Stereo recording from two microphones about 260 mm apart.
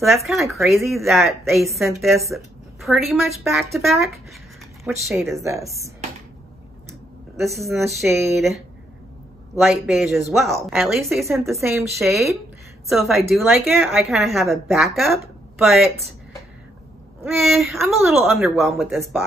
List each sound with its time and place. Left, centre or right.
0.0 s a woman's voice: centre
5.3 s speech: centre
6.9 s speech: centre
9.6 s a woman's voice: centre
11.4 s a woman's voice: centre
17.2 s a woman's voice: centre